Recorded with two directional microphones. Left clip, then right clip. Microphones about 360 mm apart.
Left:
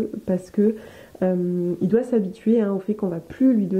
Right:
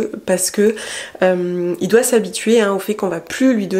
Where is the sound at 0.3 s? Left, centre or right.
Centre.